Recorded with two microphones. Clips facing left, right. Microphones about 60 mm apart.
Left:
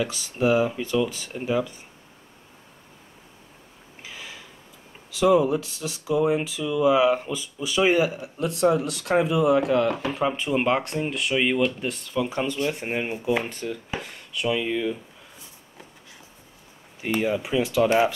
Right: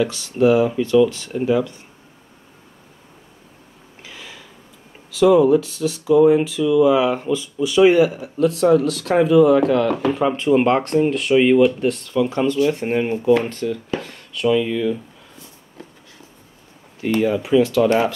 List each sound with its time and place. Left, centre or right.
0.1 s speech: centre
4.0 s a sound: centre
5.1 s speech: centre
12.3 s speech: centre
17.0 s speech: centre